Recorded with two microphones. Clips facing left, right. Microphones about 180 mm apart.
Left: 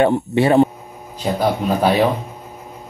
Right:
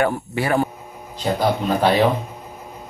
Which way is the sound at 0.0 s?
25° left (ahead or behind).